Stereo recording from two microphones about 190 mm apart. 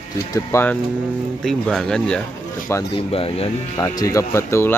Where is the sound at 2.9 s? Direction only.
30° left (ahead or behind).